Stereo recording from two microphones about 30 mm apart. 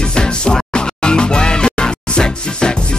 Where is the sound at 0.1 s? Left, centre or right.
Left.